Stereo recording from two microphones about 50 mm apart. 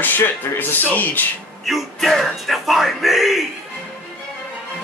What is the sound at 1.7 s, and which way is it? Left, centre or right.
Speech, centre.